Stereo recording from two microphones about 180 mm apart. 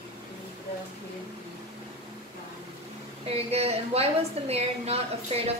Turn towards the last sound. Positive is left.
turn(degrees=-35)  # may be behind; listen again after turning